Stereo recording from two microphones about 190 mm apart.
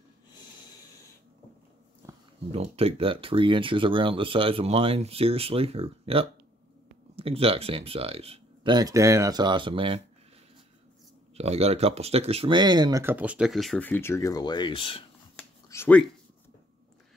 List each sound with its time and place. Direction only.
2.0 s a sound: 15° right (ahead or behind)
2.5 s speech: 30° right (ahead or behind)
11.3 s speech: 35° right (ahead or behind); by 15.0 s 25° left (ahead or behind)
15.7 s speech: 10° left (ahead or behind)